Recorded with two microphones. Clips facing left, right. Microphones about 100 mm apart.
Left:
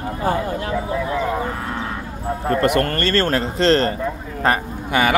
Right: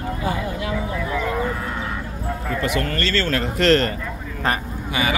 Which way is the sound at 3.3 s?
30° left (ahead or behind).